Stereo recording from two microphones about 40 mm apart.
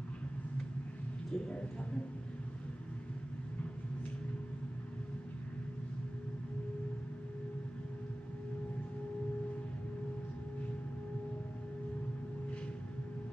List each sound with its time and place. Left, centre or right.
1.3 s speech: left